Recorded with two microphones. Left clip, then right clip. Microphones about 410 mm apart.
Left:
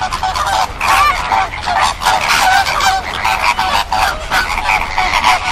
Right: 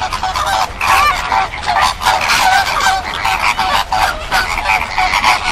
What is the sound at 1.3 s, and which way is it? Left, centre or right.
Goose, left.